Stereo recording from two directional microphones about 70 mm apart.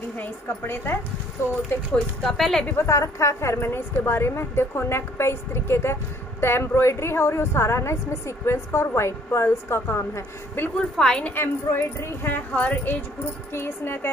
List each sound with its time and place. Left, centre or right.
0.2 s a woman's voice: left
1.9 s speech: centre
2.8 s a woman's voice: left
10.8 s a woman's voice: centre
11.2 s speech: left
13.5 s a woman's voice: left